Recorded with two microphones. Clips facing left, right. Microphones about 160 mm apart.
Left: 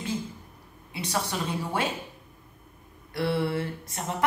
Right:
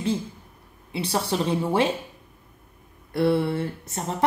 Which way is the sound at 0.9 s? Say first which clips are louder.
Right 5 dB; 30° right (ahead or behind).